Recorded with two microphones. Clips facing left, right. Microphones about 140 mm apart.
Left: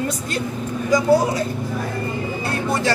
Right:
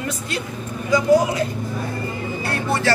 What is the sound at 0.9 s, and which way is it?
Speech, 35° left (ahead or behind).